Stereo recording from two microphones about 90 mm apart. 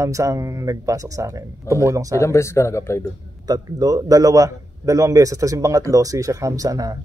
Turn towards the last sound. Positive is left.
turn(degrees=-40)  # may be behind; listen again after turning